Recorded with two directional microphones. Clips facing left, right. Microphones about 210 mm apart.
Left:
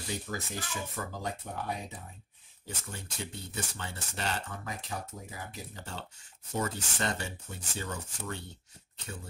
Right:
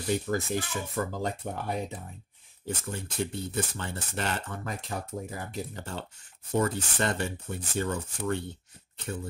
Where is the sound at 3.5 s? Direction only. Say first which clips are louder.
Right 4 dB; 55° right (ahead or behind).